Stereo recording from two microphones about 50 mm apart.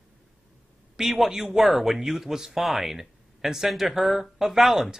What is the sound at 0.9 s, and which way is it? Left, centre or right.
A man's voice, centre.